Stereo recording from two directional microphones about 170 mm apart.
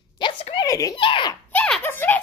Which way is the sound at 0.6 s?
20° left (ahead or behind).